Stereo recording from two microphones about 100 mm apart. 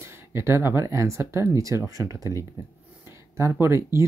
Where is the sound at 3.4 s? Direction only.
25° right (ahead or behind).